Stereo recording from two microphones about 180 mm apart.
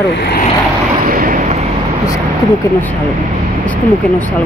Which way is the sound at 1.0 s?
50° right (ahead or behind).